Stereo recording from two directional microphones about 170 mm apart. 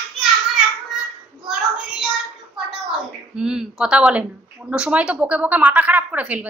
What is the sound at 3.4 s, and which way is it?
A woman's voice, 5° right (ahead or behind).